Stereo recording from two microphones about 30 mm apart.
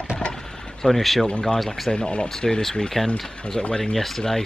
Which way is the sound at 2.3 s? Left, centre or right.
Centre.